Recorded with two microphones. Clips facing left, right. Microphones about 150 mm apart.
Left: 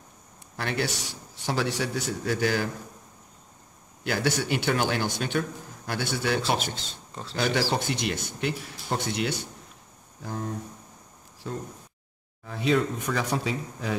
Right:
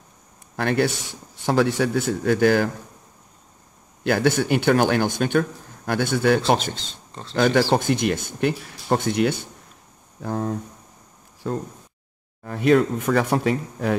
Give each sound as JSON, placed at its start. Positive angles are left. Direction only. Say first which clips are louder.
{"t": 0.6, "sound": "speech", "louder": "right 8 dB", "side_deg": -50}
{"t": 4.0, "sound": "speech", "louder": "right 7 dB", "side_deg": -55}
{"t": 11.4, "sound": "speech", "louder": "right 7 dB", "side_deg": -60}